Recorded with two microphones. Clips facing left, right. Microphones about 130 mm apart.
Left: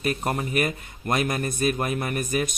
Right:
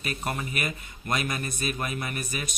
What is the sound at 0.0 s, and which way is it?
A man's voice, 40° left (ahead or behind).